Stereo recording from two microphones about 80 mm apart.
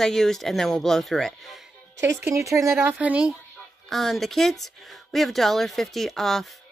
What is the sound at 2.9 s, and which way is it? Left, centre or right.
Speech, centre.